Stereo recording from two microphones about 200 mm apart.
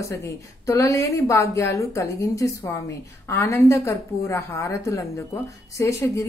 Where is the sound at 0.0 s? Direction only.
15° left (ahead or behind).